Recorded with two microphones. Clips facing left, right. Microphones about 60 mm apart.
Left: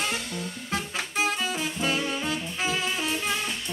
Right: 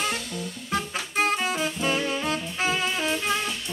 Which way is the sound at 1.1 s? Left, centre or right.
Right.